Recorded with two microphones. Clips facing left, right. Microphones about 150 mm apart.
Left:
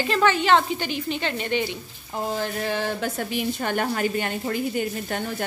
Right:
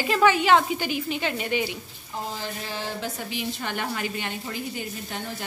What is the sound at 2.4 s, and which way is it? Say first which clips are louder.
A woman's voice: left 7 dB; 55° left (ahead or behind).